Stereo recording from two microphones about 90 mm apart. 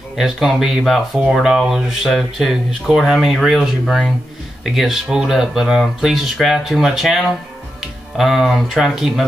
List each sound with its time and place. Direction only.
0.1 s speech: 5° right (ahead or behind)